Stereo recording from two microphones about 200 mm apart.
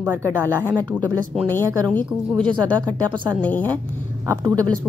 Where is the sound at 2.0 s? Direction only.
5° left (ahead or behind).